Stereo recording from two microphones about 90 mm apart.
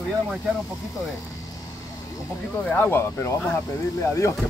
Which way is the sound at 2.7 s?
25° left (ahead or behind).